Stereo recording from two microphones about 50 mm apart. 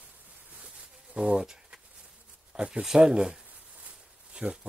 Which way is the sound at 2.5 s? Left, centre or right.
Centre.